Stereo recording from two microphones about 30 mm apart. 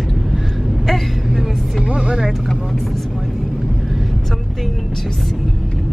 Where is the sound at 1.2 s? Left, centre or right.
Centre.